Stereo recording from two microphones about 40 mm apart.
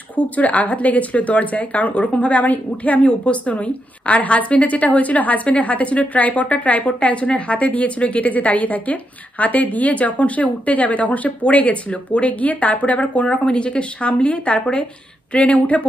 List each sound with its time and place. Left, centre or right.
0.1 s speech: left